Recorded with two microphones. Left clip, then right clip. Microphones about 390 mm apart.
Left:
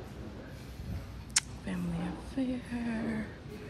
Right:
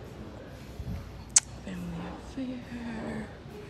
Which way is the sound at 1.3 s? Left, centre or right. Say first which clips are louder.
Right 5 dB; centre.